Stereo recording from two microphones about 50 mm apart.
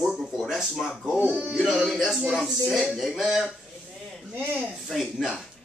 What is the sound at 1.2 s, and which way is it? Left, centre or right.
Male singing, right.